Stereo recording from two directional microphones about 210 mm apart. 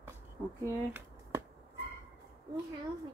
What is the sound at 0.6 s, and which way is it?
Speech, 15° right (ahead or behind).